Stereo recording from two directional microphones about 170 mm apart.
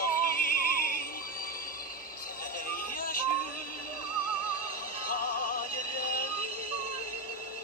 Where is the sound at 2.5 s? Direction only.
55° left (ahead or behind).